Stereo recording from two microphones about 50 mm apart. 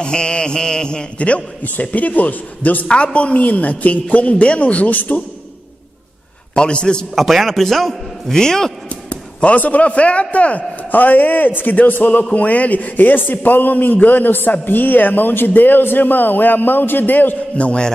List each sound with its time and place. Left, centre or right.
0.0 s a man's voice: centre; by 2.9 s left
2.9 s a man's voice: left
6.5 s a man's voice: centre
7.2 s a man's voice: centre
8.8 s a man's voice: left
17.6 s a man's voice: left